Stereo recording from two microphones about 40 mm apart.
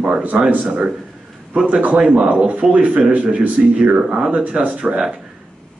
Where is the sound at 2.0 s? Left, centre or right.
Right.